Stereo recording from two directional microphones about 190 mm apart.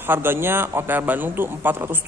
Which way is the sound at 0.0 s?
10° right (ahead or behind).